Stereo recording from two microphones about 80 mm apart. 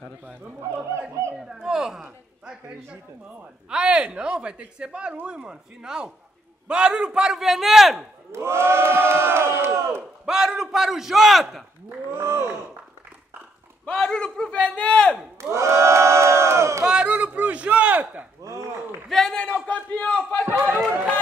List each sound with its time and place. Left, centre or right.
1.5 s a sound: centre
3.7 s speech: centre
8.3 s speech: right
10.2 s a man's voice: centre
12.2 s speech: right
13.8 s speech: centre
15.5 s crowd: right
16.8 s a sound: centre
19.0 s speech: centre
20.4 s speech: right